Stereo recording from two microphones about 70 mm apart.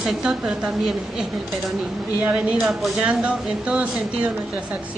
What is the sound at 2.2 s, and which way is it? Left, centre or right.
Speech, right.